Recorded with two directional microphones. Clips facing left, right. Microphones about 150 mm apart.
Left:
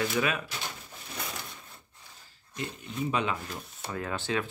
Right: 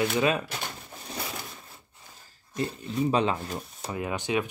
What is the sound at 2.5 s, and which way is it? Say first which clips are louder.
Speech: right 7 dB; 35° right (ahead or behind).